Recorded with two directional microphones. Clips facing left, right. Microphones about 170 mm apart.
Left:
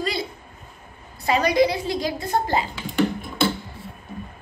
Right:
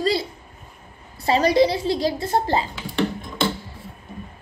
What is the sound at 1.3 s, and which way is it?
A woman's voice, 30° right (ahead or behind).